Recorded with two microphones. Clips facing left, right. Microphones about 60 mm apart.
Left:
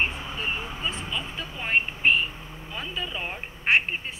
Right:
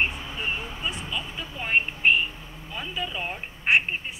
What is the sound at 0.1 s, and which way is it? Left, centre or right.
Vehicle, centre.